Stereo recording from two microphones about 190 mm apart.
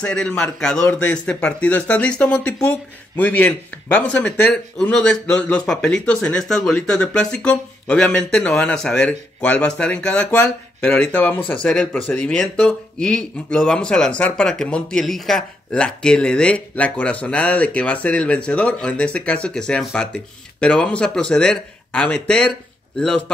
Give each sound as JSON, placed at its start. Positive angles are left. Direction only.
{"t": 0.0, "sound": "a man's voice", "side_deg": 5}